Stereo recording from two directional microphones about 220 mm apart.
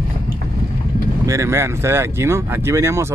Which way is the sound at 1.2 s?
15° right (ahead or behind).